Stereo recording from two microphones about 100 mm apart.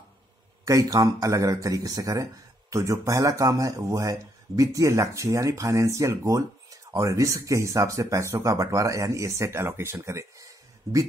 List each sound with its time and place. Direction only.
0.7 s speech: 35° right (ahead or behind)